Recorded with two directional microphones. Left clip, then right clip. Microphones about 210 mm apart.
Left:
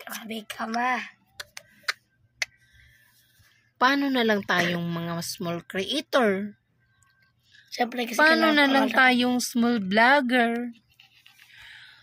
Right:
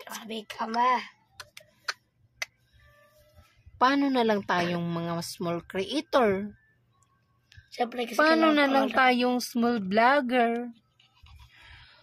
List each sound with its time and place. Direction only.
0.0 s speech: 10° right (ahead or behind)
1.3 s tick-tock: 5° right (ahead or behind)
3.7 s a woman's voice: 5° right (ahead or behind)
7.7 s a woman's voice: centre (ahead or behind)